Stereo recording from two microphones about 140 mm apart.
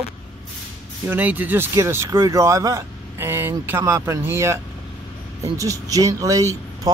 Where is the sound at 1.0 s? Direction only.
15° right (ahead or behind).